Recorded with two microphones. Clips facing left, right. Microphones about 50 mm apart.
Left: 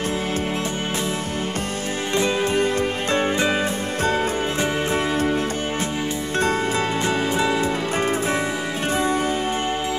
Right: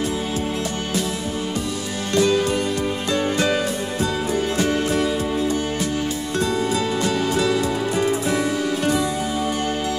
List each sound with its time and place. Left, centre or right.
2.1 s music: left
3.3 s music: left
4.0 s music: left
4.6 s music: left
5.1 s music: left
7.9 s music: left